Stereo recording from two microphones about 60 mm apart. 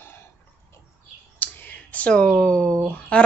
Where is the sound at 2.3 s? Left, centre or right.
Centre.